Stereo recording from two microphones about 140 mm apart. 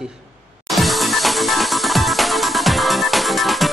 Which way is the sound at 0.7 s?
Centre (ahead or behind).